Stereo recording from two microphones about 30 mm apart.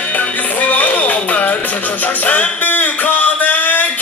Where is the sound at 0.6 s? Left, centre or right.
Left.